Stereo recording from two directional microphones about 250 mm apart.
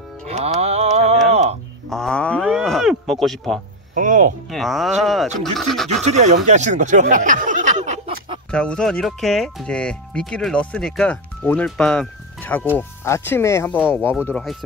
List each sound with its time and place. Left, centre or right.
0.3 s music: right
1.9 s cattle: centre
3.9 s speech: right
4.5 s speech: centre
6.0 s speech: right
8.5 s speech: centre